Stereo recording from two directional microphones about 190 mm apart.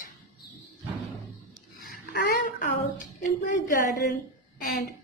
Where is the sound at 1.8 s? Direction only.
50° left (ahead or behind).